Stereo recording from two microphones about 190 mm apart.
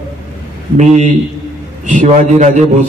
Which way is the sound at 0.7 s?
40° right (ahead or behind).